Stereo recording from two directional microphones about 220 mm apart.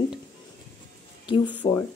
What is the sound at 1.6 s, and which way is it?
Speech, 30° left (ahead or behind).